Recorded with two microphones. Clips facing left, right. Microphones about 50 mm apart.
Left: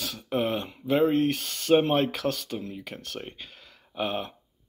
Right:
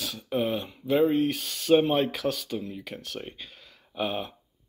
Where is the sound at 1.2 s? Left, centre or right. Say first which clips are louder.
Left 1 dB; left.